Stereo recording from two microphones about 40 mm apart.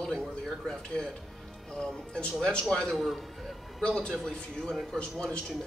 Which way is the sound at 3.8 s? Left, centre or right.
Left.